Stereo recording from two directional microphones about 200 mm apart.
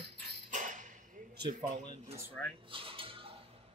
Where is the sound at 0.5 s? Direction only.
40° right (ahead or behind).